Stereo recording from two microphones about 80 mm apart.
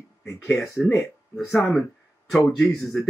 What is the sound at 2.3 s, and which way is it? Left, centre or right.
Speech, centre.